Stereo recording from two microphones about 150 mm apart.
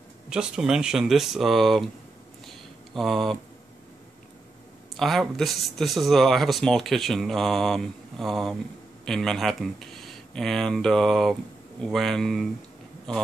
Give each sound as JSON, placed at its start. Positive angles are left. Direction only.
{"t": 0.3, "sound": "speech", "side_deg": -5}
{"t": 2.4, "sound": "a sound", "side_deg": 0}
{"t": 4.9, "sound": "speech", "side_deg": 0}